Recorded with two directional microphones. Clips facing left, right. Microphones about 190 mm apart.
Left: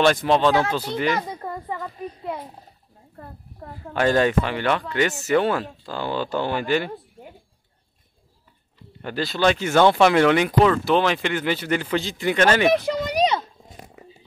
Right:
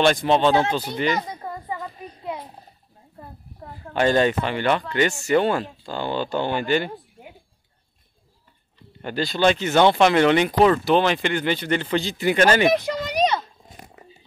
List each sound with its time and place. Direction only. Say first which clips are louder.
0.4 s speech: right 1 dB; 25° right (ahead or behind)
0.9 s a sound: even; 5° left (ahead or behind)
3.9 s speech: even; centre (ahead or behind)
9.0 s speech: right 1 dB; centre (ahead or behind)
9.8 s speech: left 1 dB; 20° right (ahead or behind)
10.2 s speech: right 1 dB; 5° left (ahead or behind)